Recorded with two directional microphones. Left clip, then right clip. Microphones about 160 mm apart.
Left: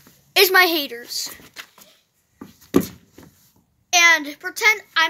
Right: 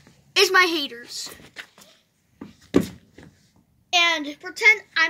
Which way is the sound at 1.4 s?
20° left (ahead or behind).